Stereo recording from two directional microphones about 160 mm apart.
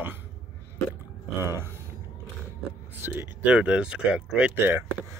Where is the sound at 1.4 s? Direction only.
15° right (ahead or behind).